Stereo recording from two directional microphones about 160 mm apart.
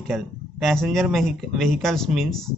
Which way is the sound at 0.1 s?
Centre (ahead or behind).